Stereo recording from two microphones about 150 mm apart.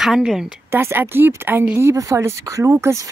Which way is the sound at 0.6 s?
15° right (ahead or behind).